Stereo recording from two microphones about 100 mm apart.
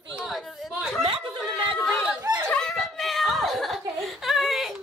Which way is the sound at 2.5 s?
5° left (ahead or behind).